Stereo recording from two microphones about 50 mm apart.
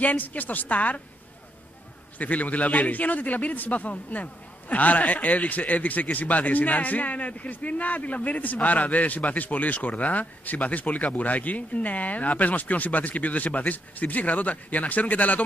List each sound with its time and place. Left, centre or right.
0.0 s a man's voice: left
2.1 s a man's voice: left